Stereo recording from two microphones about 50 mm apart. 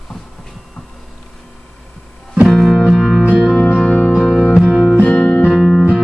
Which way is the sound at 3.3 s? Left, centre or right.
Right.